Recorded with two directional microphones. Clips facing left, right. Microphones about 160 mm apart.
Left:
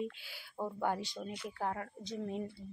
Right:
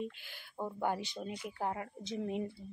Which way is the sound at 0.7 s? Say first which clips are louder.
Right 1 dB; 5° right (ahead or behind).